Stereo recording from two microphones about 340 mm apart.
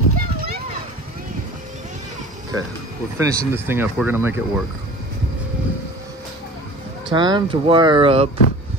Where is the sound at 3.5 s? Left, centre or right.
Centre.